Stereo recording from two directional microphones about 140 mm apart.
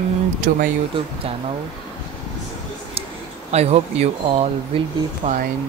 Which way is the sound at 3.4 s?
50° right (ahead or behind).